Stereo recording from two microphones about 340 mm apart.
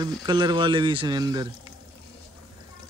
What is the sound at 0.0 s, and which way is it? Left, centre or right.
Speech, centre.